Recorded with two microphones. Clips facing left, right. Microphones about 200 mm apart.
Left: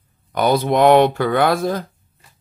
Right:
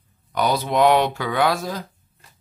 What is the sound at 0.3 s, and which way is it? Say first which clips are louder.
Speech: left 5 dB; 55° left (ahead or behind).